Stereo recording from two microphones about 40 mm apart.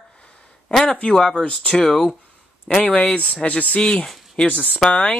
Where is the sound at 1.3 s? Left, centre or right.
Left.